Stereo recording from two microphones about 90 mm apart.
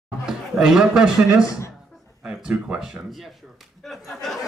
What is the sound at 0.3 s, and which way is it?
A man's voice, 5° right (ahead or behind).